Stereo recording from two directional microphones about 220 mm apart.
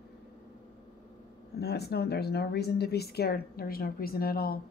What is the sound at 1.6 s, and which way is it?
Speech, 45° left (ahead or behind).